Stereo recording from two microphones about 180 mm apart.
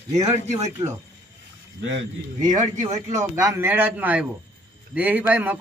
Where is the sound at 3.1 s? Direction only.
20° right (ahead or behind).